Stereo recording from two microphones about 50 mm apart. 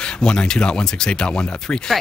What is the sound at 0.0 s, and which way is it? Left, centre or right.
Speech, centre.